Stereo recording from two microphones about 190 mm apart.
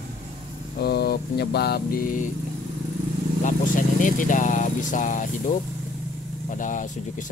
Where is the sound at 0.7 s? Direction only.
55° left (ahead or behind).